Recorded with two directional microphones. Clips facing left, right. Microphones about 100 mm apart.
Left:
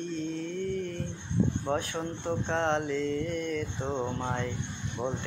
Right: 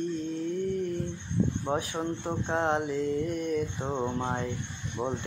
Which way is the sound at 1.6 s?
15° right (ahead or behind).